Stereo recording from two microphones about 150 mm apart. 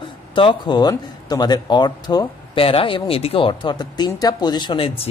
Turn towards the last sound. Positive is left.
turn(degrees=40)  # may be behind; listen again after turning